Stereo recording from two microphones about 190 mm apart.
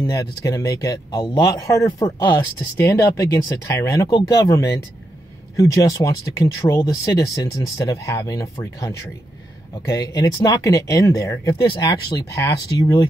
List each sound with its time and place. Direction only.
0.0 s speech: 20° left (ahead or behind)